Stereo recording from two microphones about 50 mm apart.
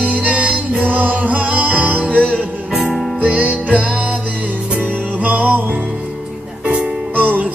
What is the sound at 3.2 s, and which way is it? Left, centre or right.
Music, right.